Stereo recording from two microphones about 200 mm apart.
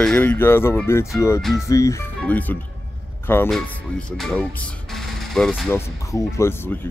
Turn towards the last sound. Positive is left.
turn(degrees=15)  # may be behind; listen again after turning